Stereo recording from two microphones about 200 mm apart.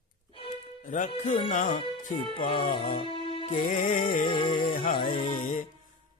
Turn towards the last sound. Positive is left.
turn(degrees=35)  # may be behind; listen again after turning